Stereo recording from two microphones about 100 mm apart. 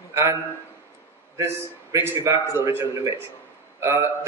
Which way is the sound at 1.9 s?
30° right (ahead or behind).